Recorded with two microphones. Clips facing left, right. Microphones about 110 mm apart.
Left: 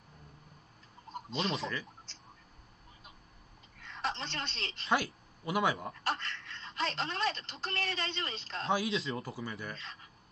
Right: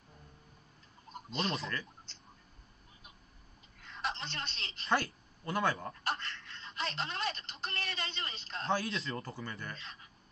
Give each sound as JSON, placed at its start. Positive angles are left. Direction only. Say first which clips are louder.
{"t": 1.4, "sound": "speech", "louder": "left 1 dB", "side_deg": 0}
{"t": 3.9, "sound": "a sound", "louder": "left 2 dB", "side_deg": 30}
{"t": 4.8, "sound": "speech", "louder": "left 1 dB", "side_deg": 10}
{"t": 6.0, "sound": "speech", "louder": "left 2 dB", "side_deg": 30}
{"t": 8.8, "sound": "speech", "louder": "left 3 dB", "side_deg": 0}